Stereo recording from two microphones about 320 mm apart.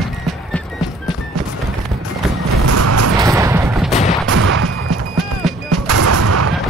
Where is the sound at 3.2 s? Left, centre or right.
Centre.